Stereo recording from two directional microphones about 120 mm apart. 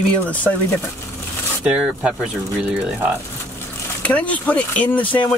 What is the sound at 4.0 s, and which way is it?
Speech, 10° left (ahead or behind).